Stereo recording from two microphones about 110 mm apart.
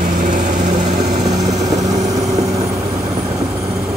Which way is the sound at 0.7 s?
90° right.